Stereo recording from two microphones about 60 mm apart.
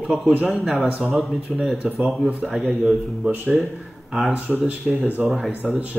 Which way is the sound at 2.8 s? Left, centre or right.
Centre.